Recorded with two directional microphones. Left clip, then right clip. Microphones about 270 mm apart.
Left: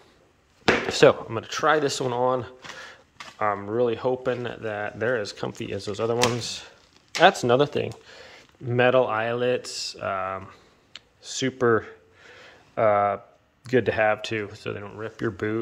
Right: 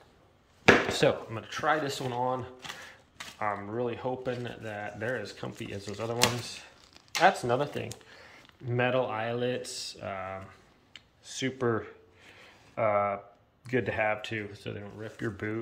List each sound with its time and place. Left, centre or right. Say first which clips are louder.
0.7 s chop: right 1 dB; left
1.0 s speech: left 9 dB; left